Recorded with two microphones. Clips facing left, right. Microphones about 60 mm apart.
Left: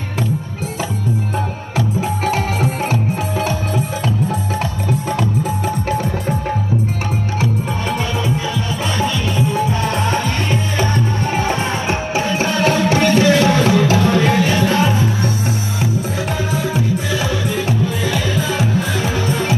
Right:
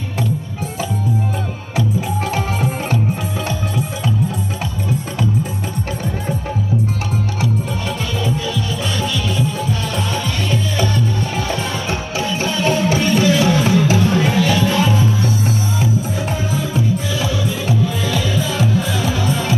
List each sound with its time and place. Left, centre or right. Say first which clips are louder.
2.3 s music: left 2 dB; centre
9.0 s music: left 3 dB; left
12.6 s music: left 2 dB; left
14.6 s music: left 1 dB; left
17.2 s music: left 1 dB; left